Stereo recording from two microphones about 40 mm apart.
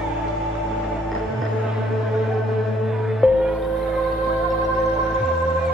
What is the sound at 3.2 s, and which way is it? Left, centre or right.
Music, centre.